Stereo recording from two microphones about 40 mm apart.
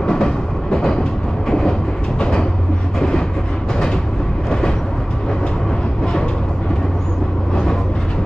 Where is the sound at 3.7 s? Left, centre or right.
Centre.